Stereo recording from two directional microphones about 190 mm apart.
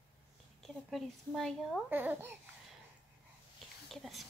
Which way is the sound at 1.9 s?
10° right (ahead or behind).